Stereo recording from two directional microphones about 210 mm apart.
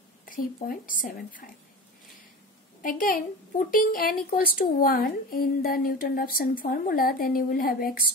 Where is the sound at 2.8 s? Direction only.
40° left (ahead or behind).